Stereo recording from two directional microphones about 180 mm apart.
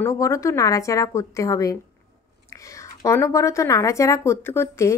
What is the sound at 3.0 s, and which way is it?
Speech, 15° left (ahead or behind).